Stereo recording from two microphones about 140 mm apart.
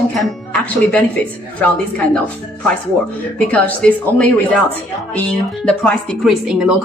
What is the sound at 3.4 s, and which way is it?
Speech, 10° left (ahead or behind).